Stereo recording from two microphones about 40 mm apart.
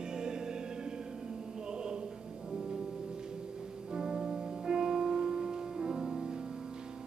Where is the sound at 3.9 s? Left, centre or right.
Centre.